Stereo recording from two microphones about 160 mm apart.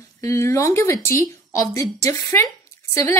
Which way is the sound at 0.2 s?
20° left (ahead or behind).